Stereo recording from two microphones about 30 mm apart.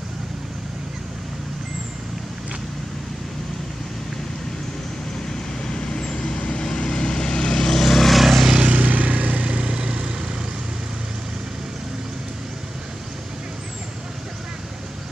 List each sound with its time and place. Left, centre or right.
5.7 s vehicle: left
7.6 s vehicle: centre
8.2 s vehicle: centre
8.7 s vehicle: right
9.5 s vehicle: right